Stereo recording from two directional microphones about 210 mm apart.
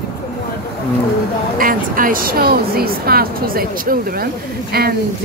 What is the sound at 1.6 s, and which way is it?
Speech, 40° right (ahead or behind).